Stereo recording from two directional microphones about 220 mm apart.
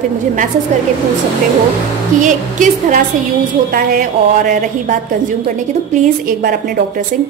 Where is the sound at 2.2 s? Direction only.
35° right (ahead or behind).